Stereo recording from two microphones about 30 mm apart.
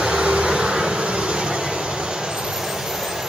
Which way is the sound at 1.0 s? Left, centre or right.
Right.